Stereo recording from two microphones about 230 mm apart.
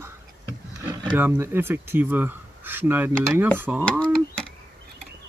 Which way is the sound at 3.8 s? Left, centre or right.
Centre.